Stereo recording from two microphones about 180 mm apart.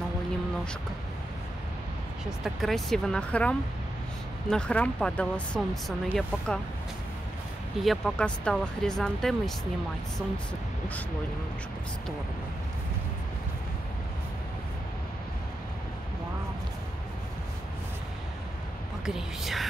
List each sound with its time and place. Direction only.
2.4 s speech: centre (ahead or behind)
7.8 s speech: centre (ahead or behind)
19.0 s speech: centre (ahead or behind)